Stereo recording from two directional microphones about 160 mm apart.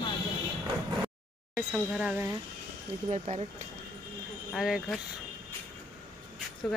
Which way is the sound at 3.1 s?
45° right (ahead or behind).